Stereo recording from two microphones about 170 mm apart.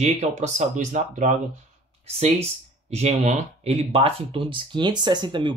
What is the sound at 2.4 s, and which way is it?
Speech, 40° right (ahead or behind).